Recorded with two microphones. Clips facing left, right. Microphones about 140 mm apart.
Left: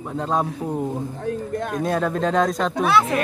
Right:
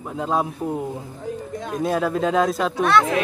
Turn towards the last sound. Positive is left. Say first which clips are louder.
# right 1 dB
turn(degrees=5)  # may be behind; listen again after turning